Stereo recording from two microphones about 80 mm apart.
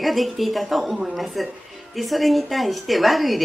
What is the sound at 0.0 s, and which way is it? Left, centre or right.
Speech, centre.